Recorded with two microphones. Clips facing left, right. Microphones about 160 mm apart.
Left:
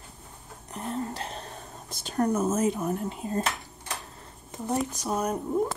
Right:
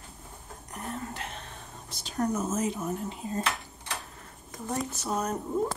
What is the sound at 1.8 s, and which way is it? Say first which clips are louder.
Speech: left 3 dB; 50° left (ahead or behind).